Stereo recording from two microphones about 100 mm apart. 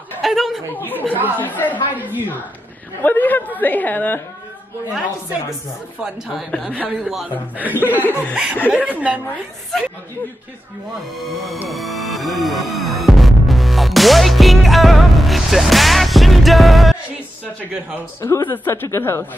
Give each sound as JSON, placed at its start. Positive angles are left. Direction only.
{"t": 0.2, "sound": "speech", "side_deg": 0}
{"t": 0.7, "sound": "a woman's voice", "side_deg": 20}
{"t": 1.9, "sound": "a woman's voice", "side_deg": -20}
{"t": 3.0, "sound": "a woman's voice", "side_deg": 15}
{"t": 6.0, "sound": "a woman's voice", "side_deg": -5}
{"t": 6.9, "sound": "music", "side_deg": 0}
{"t": 7.5, "sound": "a woman's voice", "side_deg": -15}
{"t": 11.1, "sound": "music", "side_deg": 0}
{"t": 18.2, "sound": "a woman's voice", "side_deg": 25}